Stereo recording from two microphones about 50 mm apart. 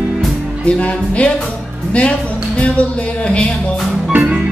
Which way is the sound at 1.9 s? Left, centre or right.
Left.